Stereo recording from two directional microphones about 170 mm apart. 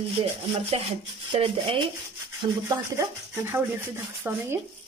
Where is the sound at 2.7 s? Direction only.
15° right (ahead or behind).